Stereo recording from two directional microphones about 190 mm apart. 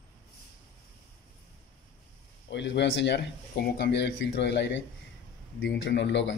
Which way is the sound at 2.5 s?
70° left (ahead or behind).